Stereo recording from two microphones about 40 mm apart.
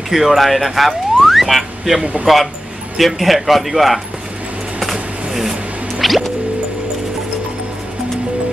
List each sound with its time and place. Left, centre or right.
0.1 s speech: centre
2.3 s speech: centre
3.0 s speech: centre
5.3 s music: centre